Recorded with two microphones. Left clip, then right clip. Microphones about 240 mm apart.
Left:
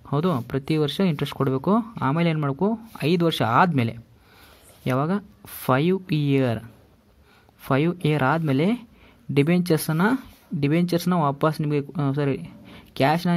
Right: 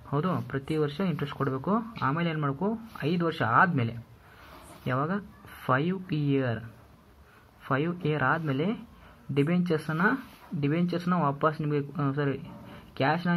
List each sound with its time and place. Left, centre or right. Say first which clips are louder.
0.1 s speech: left 6 dB; left
7.6 s speech: left 6 dB; left